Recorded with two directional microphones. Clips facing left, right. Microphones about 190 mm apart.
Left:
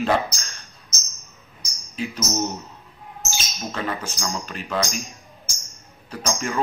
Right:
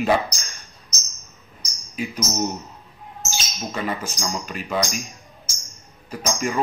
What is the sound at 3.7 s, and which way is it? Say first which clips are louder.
Speech: right 1 dB; 10° right (ahead or behind).